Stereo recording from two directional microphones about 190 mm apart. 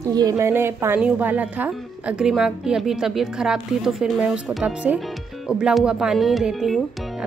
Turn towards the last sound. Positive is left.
turn(degrees=0)  # may be behind; listen again after turning